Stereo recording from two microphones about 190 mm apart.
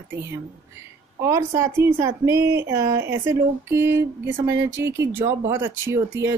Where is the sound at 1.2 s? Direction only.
15° right (ahead or behind).